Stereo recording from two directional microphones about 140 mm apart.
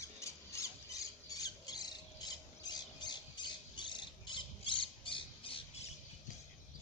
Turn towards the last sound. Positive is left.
turn(degrees=40)  # may be behind; listen again after turning